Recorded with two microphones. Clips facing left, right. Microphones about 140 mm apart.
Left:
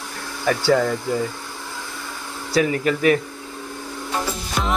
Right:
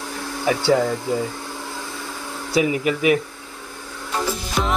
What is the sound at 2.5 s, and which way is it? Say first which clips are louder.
Speech: even; 10° right (ahead or behind).